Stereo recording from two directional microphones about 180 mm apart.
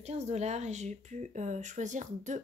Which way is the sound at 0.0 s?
35° right (ahead or behind).